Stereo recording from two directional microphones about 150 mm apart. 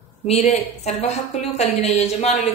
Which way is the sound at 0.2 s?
45° left (ahead or behind).